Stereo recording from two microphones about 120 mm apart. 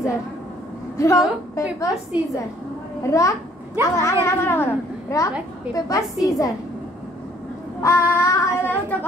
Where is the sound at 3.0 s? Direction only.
25° left (ahead or behind).